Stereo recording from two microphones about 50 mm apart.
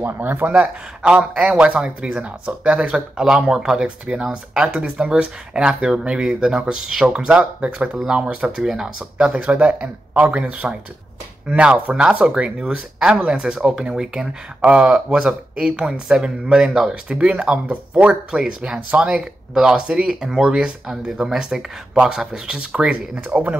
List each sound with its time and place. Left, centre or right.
0.0 s speech: right
0.5 s speech: right
7.2 s speech: right
8.6 s speech: centre
9.3 s speech: right
18.3 s speech: centre
18.9 s speech: right
19.5 s speech: centre; by 23.6 s right